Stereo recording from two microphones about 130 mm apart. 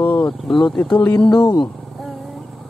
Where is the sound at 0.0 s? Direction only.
15° left (ahead or behind).